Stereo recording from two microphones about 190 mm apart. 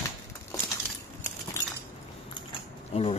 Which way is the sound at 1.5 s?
15° left (ahead or behind).